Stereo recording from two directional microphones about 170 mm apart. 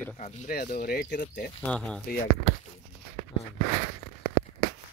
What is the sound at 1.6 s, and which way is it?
Speech, 5° left (ahead or behind).